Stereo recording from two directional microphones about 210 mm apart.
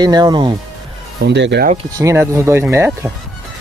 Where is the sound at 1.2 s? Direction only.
55° right (ahead or behind).